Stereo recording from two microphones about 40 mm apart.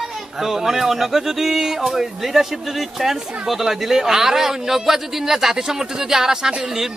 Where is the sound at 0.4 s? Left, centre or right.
Centre.